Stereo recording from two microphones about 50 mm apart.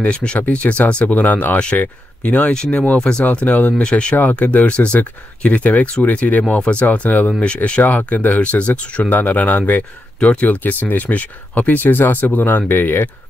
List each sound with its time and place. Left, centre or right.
0.0 s speech: left
2.9 s speech: centre
3.3 s speech: left
7.8 s speech: left